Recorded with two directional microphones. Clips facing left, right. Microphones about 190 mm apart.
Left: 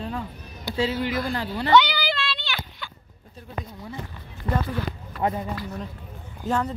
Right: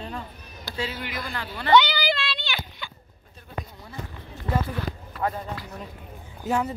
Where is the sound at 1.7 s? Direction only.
5° left (ahead or behind).